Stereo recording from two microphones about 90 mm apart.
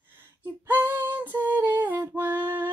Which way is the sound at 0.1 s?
20° right (ahead or behind).